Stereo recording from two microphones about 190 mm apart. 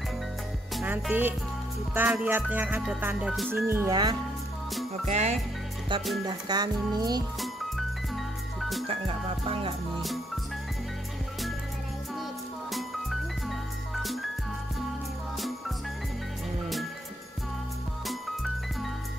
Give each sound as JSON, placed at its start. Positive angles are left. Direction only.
{"t": 0.7, "sound": "speech", "side_deg": -5}
{"t": 2.5, "sound": "music", "side_deg": -10}
{"t": 3.6, "sound": "speech", "side_deg": -15}
{"t": 5.0, "sound": "music", "side_deg": -35}
{"t": 6.2, "sound": "music", "side_deg": -20}
{"t": 8.5, "sound": "music", "side_deg": 0}
{"t": 8.8, "sound": "music", "side_deg": -30}
{"t": 10.0, "sound": "music", "side_deg": 0}
{"t": 12.7, "sound": "music", "side_deg": 0}
{"t": 18.0, "sound": "music", "side_deg": 0}